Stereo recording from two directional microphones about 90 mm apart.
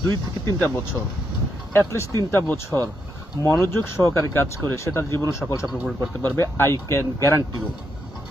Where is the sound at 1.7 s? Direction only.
30° left (ahead or behind).